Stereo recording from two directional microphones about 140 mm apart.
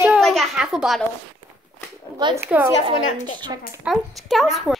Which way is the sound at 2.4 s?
10° right (ahead or behind).